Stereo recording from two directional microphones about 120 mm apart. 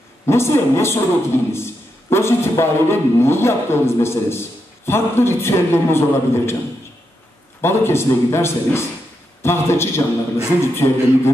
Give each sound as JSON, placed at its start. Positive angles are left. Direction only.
{"t": 0.3, "sound": "a man's voice", "side_deg": 20}
{"t": 7.6, "sound": "a man's voice", "side_deg": 20}